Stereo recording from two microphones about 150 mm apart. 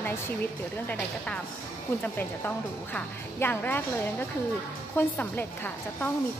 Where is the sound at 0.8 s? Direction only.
5° left (ahead or behind).